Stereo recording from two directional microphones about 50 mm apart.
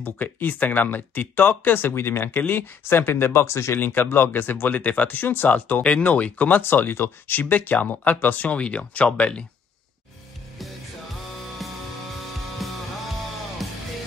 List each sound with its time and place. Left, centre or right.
0.0 s speech: left
3.1 s speech: left
3.8 s speech: left
4.6 s speech: left
5.8 s speech: left
6.6 s speech: left
12.5 s music: centre